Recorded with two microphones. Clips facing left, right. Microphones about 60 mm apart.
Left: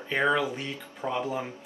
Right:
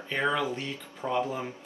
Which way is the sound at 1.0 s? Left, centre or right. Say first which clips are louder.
Right 1 dB; centre.